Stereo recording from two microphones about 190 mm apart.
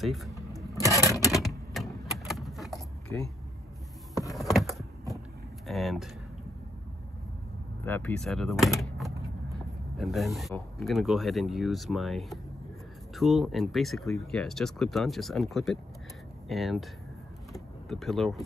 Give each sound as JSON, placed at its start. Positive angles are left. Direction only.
{"t": 0.0, "sound": "speech", "side_deg": 0}
{"t": 0.3, "sound": "vehicle", "side_deg": 20}
{"t": 0.7, "sound": "a sound", "side_deg": -15}
{"t": 1.1, "sound": "typewriter", "side_deg": 15}
{"t": 1.8, "sound": "a sound", "side_deg": 0}
{"t": 2.1, "sound": "vehicle", "side_deg": 0}
{"t": 4.1, "sound": "a sound", "side_deg": 20}
{"t": 4.4, "sound": "a sound", "side_deg": 0}
{"t": 5.7, "sound": "speech", "side_deg": 0}
{"t": 7.8, "sound": "door", "side_deg": 10}
{"t": 10.5, "sound": "speech", "side_deg": 0}
{"t": 17.5, "sound": "power windows", "side_deg": 0}